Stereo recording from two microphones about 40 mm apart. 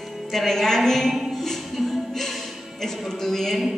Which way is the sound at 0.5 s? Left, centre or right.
Centre.